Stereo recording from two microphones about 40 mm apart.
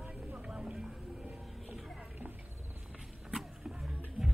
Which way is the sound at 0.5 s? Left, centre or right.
Centre.